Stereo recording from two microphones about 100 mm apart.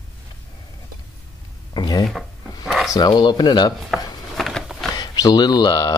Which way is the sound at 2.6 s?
5° right (ahead or behind).